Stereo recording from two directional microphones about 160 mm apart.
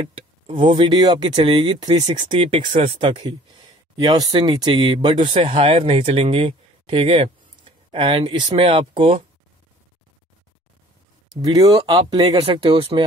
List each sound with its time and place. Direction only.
0.1 s speech: 30° right (ahead or behind)
11.4 s speech: 20° right (ahead or behind)
11.8 s speech: 30° right (ahead or behind)